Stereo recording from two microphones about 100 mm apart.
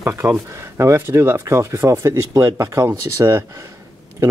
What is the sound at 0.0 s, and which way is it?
Speech, 25° right (ahead or behind).